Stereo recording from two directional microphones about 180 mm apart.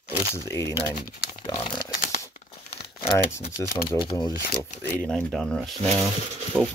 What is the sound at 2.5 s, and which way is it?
Tearing, 30° left (ahead or behind).